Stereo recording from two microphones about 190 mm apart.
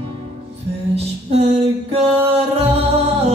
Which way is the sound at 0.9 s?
35° right (ahead or behind).